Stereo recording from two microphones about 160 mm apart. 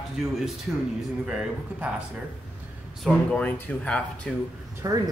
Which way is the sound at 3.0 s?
10° left (ahead or behind).